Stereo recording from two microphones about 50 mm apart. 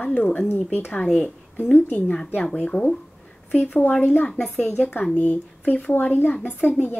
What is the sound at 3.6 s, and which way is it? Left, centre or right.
Speech, left.